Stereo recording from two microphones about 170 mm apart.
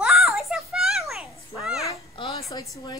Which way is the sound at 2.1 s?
30° left (ahead or behind).